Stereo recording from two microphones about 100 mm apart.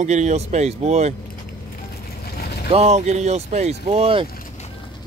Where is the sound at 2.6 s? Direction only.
90° right; by 4.2 s 70° right (ahead or behind).